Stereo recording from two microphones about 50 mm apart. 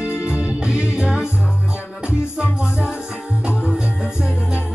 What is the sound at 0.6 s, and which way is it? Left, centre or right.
Music, centre.